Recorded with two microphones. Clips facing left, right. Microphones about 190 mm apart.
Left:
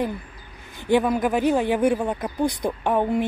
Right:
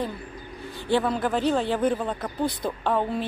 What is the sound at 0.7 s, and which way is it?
A woman's voice, 15° left (ahead or behind).